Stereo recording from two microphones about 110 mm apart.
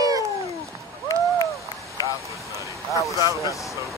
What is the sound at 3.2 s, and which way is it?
Vehicle, 30° right (ahead or behind).